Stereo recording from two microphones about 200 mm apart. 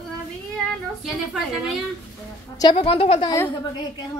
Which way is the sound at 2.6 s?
25° left (ahead or behind).